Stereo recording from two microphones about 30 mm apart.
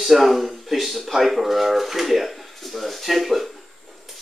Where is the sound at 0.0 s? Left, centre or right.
Centre.